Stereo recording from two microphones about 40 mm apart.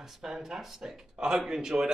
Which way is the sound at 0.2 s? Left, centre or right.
Centre.